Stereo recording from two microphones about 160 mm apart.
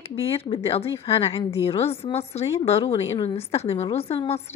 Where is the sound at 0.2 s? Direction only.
35° left (ahead or behind).